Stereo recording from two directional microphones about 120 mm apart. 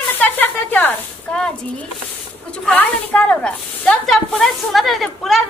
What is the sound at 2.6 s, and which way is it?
A woman's voice, 10° left (ahead or behind).